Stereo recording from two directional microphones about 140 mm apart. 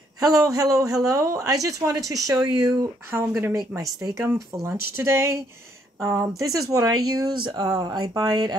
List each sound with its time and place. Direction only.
0.2 s a man's voice: 25° right (ahead or behind)